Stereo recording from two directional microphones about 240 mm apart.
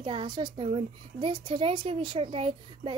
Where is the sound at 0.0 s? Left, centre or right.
Centre.